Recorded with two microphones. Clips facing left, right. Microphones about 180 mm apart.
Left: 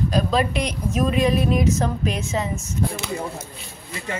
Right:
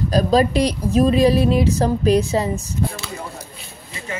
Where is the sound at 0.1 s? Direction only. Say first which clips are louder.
Right 10 dB; 35° right (ahead or behind).